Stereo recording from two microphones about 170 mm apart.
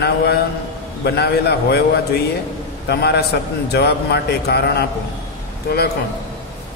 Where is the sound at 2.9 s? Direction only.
70° left (ahead or behind).